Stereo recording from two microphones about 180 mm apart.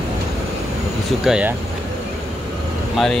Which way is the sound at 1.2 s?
5° right (ahead or behind).